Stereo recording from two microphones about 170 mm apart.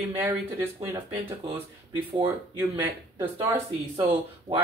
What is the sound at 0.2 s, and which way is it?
Speech, 10° right (ahead or behind).